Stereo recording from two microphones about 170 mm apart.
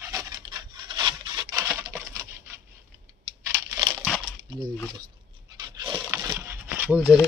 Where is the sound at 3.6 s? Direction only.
20° right (ahead or behind).